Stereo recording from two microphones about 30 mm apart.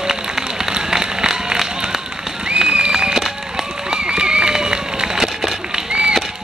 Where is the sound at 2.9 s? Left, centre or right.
Right.